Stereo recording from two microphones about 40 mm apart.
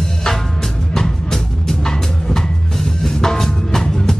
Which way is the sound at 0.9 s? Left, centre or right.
Centre.